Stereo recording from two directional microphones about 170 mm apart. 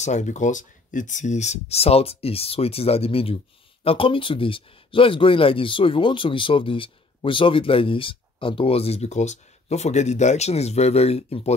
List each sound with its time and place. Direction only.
0.0 s speech: 45° left (ahead or behind)